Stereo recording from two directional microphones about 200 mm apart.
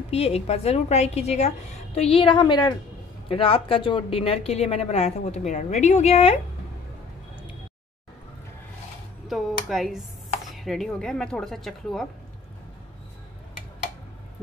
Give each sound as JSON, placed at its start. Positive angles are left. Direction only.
{"t": 0.1, "sound": "a woman's voice", "side_deg": 30}
{"t": 9.3, "sound": "speech", "side_deg": 0}